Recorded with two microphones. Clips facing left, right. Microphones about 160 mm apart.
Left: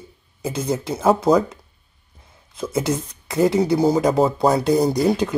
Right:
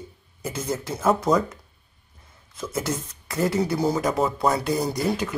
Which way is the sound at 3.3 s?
20° left (ahead or behind).